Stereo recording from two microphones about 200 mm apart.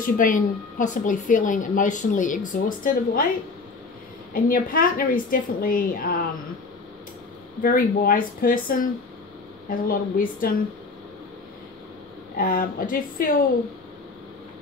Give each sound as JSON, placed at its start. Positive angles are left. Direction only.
{"t": 0.0, "sound": "a woman's voice", "side_deg": 40}
{"t": 4.3, "sound": "a woman's voice", "side_deg": 45}
{"t": 7.6, "sound": "a woman's voice", "side_deg": 45}
{"t": 12.4, "sound": "a woman's voice", "side_deg": 45}